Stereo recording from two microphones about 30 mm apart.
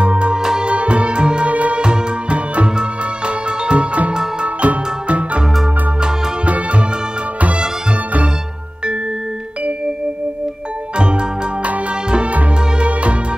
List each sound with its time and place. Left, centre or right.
0.0 s music: right
0.4 s music: centre
0.7 s music: right
1.5 s music: right
1.8 s music: right
6.4 s music: right
11.0 s music: right
12.7 s music: right